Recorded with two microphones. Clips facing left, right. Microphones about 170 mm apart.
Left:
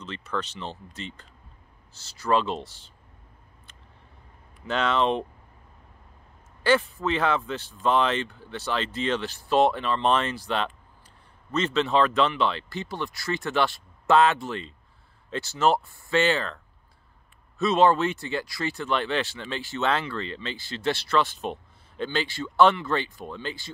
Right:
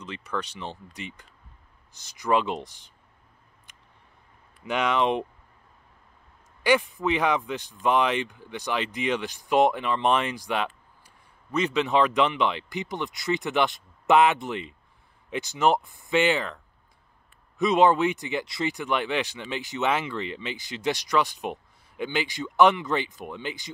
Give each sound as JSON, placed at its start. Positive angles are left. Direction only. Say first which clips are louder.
{"t": 0.0, "sound": "speech", "louder": "left 1 dB", "side_deg": -15}
{"t": 4.6, "sound": "speech", "louder": "even", "side_deg": -15}
{"t": 6.6, "sound": "speech", "louder": "even", "side_deg": -15}